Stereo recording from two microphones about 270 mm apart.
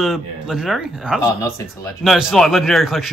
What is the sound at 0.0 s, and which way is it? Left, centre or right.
Speech, centre.